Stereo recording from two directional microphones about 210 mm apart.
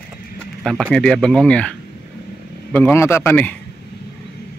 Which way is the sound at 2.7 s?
10° left (ahead or behind).